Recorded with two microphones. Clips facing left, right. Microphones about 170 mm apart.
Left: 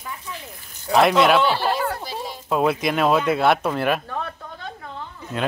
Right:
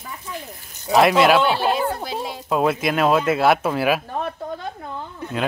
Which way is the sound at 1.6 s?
20° right (ahead or behind).